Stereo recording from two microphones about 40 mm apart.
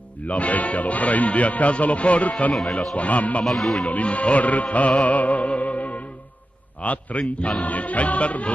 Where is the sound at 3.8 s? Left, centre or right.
Left.